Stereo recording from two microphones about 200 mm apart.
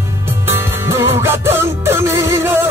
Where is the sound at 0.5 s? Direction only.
10° right (ahead or behind).